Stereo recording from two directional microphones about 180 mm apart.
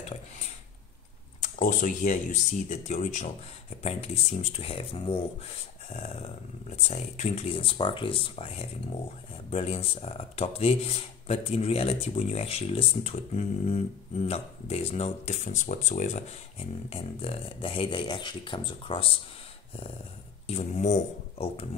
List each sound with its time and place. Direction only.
1.4 s speech: 45° left (ahead or behind)
20.4 s speech: 35° left (ahead or behind)